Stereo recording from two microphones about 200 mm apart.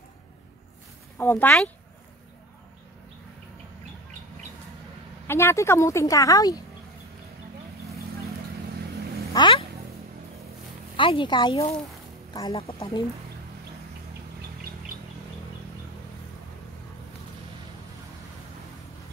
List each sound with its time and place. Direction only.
1.1 s a woman's voice: 10° left (ahead or behind)
5.2 s a woman's voice: 15° left (ahead or behind)
9.3 s vehicle: 20° left (ahead or behind)
11.0 s speech: 25° left (ahead or behind)